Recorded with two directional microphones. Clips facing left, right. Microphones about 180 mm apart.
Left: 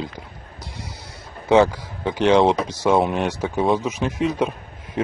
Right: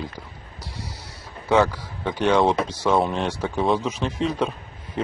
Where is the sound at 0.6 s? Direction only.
20° left (ahead or behind).